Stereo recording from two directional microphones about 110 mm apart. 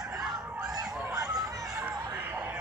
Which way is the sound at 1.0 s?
30° right (ahead or behind).